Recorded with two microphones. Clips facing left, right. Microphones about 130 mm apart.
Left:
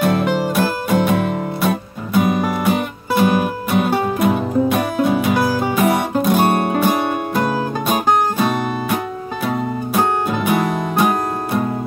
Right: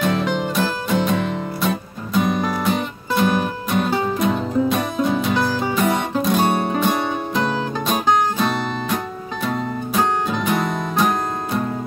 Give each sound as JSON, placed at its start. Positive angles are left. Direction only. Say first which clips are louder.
{"t": 0.0, "sound": "music", "louder": "left 3 dB", "side_deg": 5}
{"t": 6.4, "sound": "music", "louder": "left 3 dB", "side_deg": 60}
{"t": 6.7, "sound": "music", "louder": "left 3 dB", "side_deg": 5}